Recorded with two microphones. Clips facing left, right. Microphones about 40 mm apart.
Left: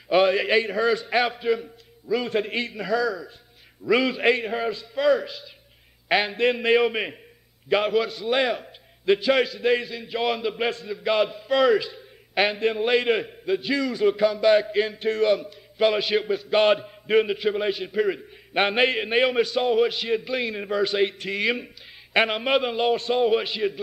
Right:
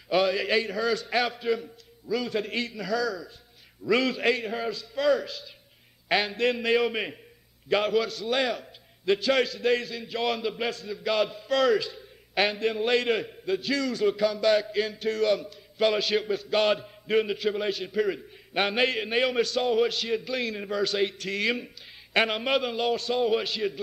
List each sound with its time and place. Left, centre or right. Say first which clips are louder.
0.1 s a man's voice: left 5 dB; left
10.7 s a man's voice: left 4 dB; left
11.0 s a man's voice: left 3 dB; centre